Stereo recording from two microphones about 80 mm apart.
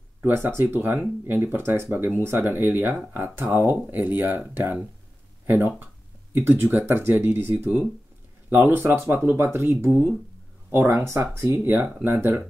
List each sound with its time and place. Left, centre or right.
0.2 s speech: right